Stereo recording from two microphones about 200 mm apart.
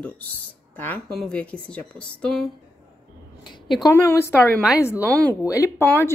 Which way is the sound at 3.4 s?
20° left (ahead or behind).